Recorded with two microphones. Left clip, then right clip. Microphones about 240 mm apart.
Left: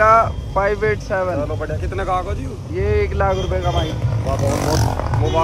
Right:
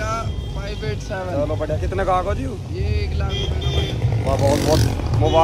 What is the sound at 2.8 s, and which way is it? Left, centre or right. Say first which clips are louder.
Speech: left 13 dB; centre.